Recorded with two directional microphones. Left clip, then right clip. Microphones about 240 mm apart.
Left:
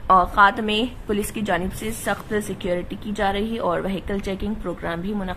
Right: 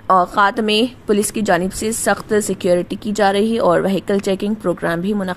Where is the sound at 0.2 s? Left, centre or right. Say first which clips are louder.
Right 2 dB; right.